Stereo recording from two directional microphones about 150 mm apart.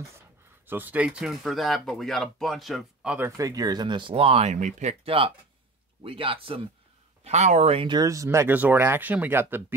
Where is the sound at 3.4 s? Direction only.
25° right (ahead or behind).